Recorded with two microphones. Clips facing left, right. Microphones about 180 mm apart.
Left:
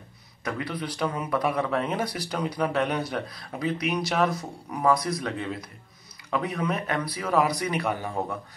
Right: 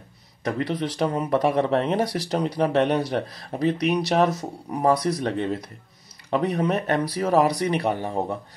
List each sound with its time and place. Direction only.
0.4 s speech: 35° right (ahead or behind)